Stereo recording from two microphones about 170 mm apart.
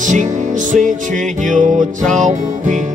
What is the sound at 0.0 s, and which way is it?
Music, 45° right (ahead or behind).